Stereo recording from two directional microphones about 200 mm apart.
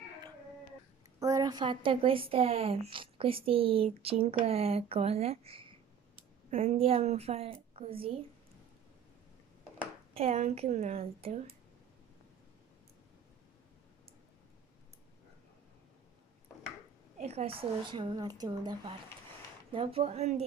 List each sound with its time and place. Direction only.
1.2 s a woman's voice: 20° right (ahead or behind)
10.1 s a woman's voice: 30° right (ahead or behind)
17.2 s a woman's voice: 30° right (ahead or behind)